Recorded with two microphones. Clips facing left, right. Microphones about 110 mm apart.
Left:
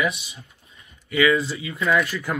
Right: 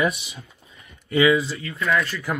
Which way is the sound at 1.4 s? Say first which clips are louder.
Even; 5° left (ahead or behind).